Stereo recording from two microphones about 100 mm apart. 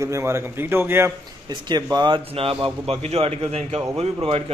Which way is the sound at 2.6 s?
75° right (ahead or behind).